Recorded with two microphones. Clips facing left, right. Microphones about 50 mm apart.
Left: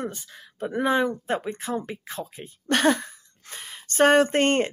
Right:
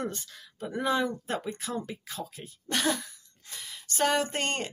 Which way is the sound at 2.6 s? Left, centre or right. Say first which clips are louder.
Left 8 dB; left.